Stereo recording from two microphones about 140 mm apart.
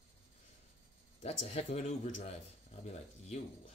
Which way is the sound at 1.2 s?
50° left (ahead or behind).